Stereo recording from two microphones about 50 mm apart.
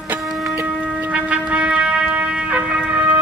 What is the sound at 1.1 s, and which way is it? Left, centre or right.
Music, right.